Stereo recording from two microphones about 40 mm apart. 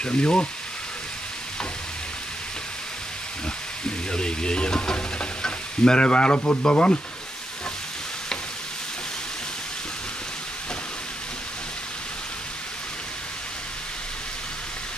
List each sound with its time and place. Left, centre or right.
0.0 s speech: left
4.1 s speech: left
4.9 s stir: left